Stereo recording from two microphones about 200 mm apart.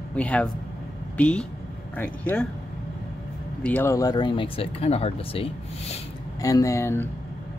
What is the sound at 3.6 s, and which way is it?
Speech, 10° left (ahead or behind).